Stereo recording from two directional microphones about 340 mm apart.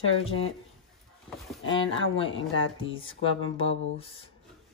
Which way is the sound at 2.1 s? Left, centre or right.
Centre.